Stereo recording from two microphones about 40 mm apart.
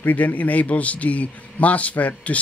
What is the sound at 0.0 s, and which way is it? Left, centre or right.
A man's voice, left.